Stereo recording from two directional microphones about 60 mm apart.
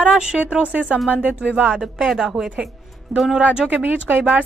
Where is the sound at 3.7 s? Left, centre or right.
Right.